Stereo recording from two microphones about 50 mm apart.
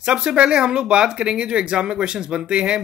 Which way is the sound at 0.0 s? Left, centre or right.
Centre.